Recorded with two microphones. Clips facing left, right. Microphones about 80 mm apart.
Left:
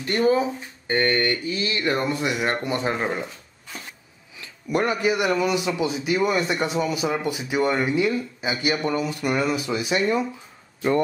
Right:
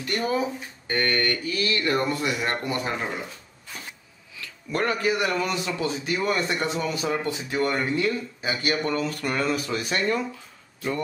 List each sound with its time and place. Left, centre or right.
0.0 s speech: left
4.4 s a man's voice: centre